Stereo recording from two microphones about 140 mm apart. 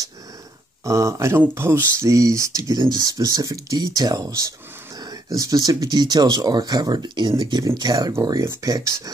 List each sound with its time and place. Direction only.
0.8 s speech: 20° right (ahead or behind)